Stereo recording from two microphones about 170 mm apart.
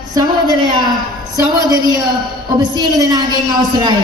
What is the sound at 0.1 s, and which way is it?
A woman's voice, 25° right (ahead or behind).